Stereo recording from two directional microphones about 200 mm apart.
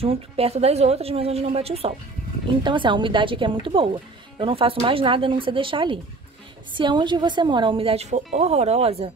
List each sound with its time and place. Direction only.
0.0 s a woman's voice: 30° right (ahead or behind)